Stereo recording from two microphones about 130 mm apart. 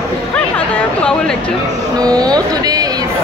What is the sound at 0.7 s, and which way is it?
Speech, 5° left (ahead or behind).